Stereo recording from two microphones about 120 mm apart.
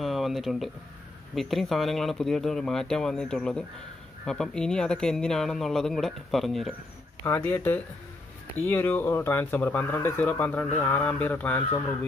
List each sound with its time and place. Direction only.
0.0 s a sound: centre (ahead or behind)
1.3 s speech: centre (ahead or behind)
7.2 s speech: 15° left (ahead or behind)